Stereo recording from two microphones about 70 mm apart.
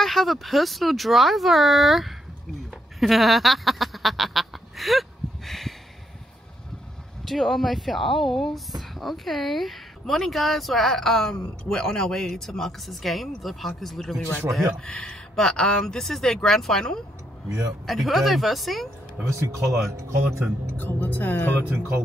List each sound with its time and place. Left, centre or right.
0.0 s speech: centre
3.0 s duck: centre
7.2 s speech: centre
19.9 s speech: right
20.7 s speech: left
21.5 s speech: right